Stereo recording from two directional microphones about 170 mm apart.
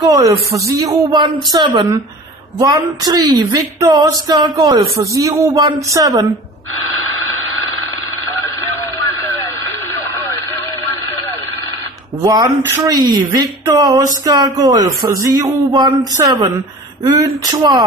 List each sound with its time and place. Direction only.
0.0 s speech: 20° right (ahead or behind)
12.2 s speech: 20° right (ahead or behind)